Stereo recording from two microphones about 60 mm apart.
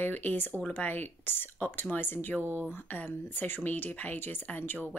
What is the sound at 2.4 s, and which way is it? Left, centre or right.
Speech, right.